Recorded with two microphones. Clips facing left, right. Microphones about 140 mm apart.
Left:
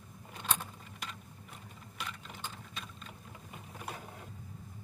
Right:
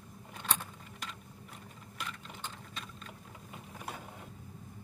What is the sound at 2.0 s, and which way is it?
Vehicle, 5° left (ahead or behind).